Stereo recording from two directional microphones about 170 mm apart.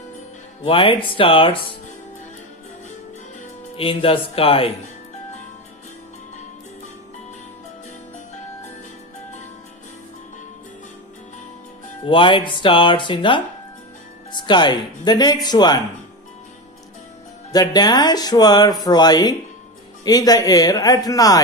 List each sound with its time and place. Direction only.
0.7 s speech: 30° left (ahead or behind)
3.7 s speech: 35° left (ahead or behind)
12.0 s speech: 30° left (ahead or behind)
17.5 s speech: 25° left (ahead or behind)